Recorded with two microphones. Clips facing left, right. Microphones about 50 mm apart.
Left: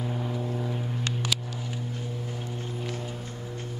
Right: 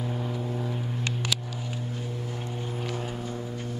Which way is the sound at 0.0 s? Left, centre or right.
Centre.